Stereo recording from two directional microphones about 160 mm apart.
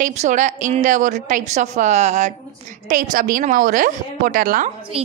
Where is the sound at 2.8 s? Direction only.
65° right (ahead or behind).